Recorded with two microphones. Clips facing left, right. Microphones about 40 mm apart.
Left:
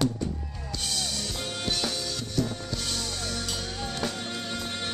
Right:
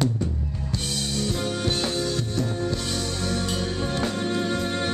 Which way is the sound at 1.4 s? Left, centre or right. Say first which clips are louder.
Right 6 dB; centre.